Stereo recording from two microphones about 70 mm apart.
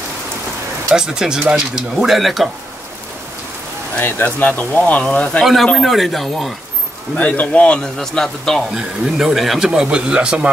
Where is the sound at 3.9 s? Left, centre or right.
Left.